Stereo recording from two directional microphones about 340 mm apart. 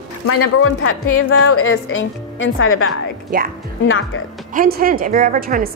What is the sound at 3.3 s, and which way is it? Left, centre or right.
Speech, right.